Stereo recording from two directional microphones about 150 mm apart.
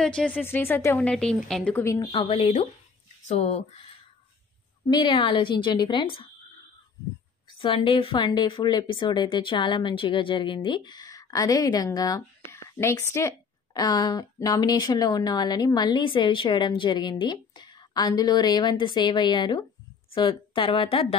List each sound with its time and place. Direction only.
0.0 s a woman's voice: 5° left (ahead or behind)
2.0 s a woman's voice: 30° left (ahead or behind); by 3.6 s 50° left (ahead or behind)
4.8 s a woman's voice: 30° left (ahead or behind)
7.6 s a woman's voice: 40° left (ahead or behind)